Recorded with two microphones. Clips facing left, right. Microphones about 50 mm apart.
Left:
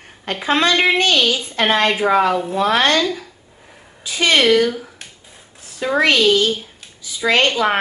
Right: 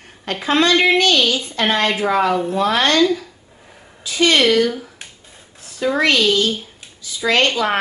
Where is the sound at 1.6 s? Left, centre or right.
Centre.